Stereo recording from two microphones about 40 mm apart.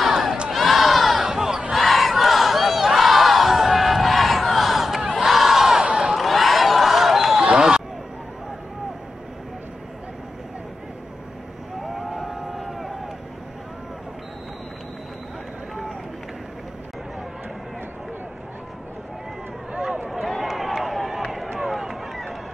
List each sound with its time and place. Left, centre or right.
0.0 s battle cry: centre
0.5 s crowd: centre
1.3 s battle cry: centre
1.7 s battle cry: centre
5.1 s crowd: centre
5.9 s a sound: right
6.1 s a sound: centre
11.9 s a sound: centre
20.3 s run: centre